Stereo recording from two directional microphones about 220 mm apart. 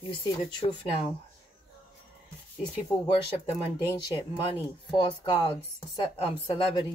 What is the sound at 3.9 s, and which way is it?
Speech, 20° left (ahead or behind).